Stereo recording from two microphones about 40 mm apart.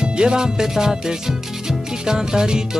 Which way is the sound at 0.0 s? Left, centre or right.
Right.